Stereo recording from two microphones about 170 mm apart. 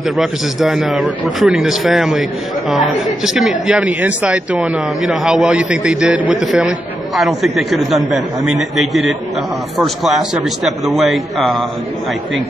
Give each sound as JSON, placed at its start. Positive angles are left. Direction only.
{"t": 0.2, "sound": "speech", "side_deg": 0}
{"t": 3.3, "sound": "speech", "side_deg": -5}